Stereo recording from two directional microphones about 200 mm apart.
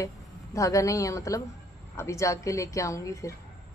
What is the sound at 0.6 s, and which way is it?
Speech, 15° left (ahead or behind).